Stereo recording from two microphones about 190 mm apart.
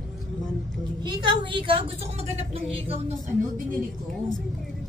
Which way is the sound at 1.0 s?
25° right (ahead or behind).